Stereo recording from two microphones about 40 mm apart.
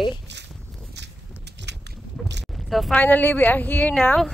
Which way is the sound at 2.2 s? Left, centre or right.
Centre.